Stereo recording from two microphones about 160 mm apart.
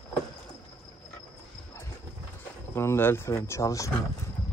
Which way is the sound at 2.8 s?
15° left (ahead or behind).